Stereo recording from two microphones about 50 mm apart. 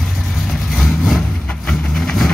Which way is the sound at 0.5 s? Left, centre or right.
Centre.